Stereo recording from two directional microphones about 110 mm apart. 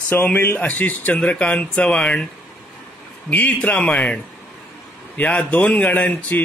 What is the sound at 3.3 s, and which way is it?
A man's voice, 15° left (ahead or behind).